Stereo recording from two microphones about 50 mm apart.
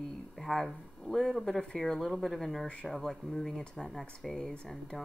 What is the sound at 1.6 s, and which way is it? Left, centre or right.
A woman's voice, centre.